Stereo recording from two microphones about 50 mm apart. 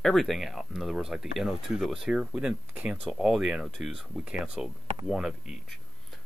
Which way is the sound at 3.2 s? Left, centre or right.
Centre.